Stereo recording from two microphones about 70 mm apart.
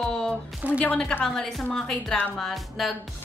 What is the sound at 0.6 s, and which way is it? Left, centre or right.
Speech, right.